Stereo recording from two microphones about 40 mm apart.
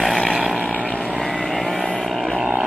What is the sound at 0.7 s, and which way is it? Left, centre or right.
Vehicle, left.